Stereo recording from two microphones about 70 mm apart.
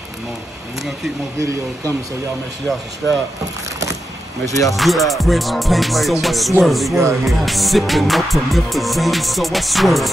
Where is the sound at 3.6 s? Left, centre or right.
Right.